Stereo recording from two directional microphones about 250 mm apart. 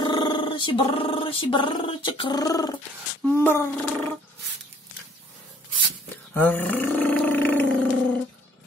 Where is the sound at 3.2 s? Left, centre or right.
Centre.